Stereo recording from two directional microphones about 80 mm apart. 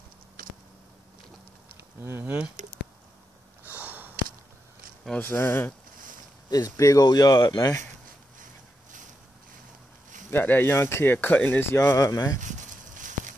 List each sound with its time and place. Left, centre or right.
2.0 s speech: right
3.6 s a sound: right
5.2 s speech: left
6.5 s speech: left
7.5 s speech: left
10.3 s speech: left
11.8 s speech: left